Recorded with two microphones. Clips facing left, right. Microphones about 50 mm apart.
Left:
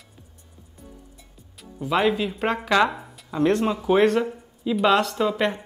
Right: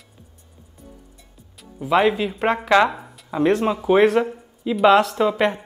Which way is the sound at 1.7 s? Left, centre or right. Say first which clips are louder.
Right 4 dB; centre.